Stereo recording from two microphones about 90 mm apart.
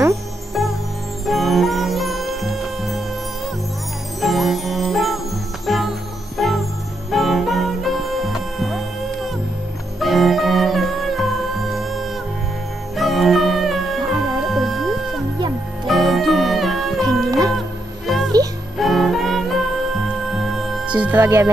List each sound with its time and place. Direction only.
0.6 s music: centre (ahead or behind)
4.2 s music: centre (ahead or behind)
20.8 s music: 15° right (ahead or behind)
21.2 s music: 30° right (ahead or behind)